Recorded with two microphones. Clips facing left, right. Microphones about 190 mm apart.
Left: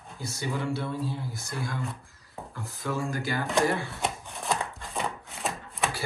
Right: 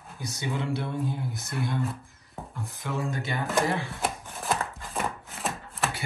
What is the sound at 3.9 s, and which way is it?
Chopping, centre (ahead or behind).